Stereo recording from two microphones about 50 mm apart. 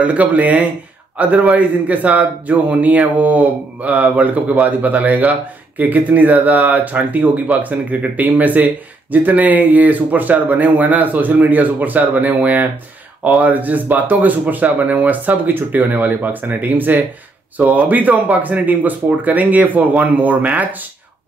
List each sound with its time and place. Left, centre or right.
0.0 s speech: right